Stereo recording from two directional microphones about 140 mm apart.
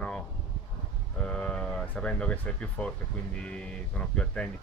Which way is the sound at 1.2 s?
5° left (ahead or behind).